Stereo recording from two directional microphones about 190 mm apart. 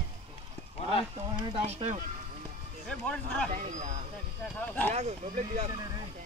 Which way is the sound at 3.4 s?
40° right (ahead or behind).